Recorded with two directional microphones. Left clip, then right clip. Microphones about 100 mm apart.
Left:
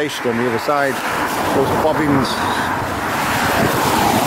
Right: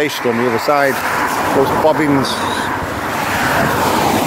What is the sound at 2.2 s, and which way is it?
Speech, 15° left (ahead or behind).